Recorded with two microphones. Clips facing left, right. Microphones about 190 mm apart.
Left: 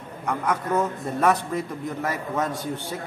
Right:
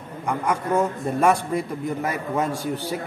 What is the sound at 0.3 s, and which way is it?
A man's voice, 10° right (ahead or behind).